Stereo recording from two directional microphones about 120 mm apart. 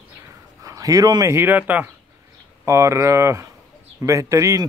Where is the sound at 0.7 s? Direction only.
30° right (ahead or behind).